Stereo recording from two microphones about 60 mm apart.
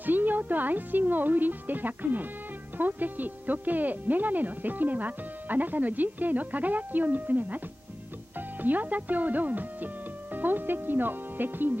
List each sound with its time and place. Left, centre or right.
0.0 s speech: right
8.6 s speech: right